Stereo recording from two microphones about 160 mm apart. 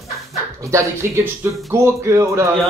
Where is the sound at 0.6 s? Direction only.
15° right (ahead or behind).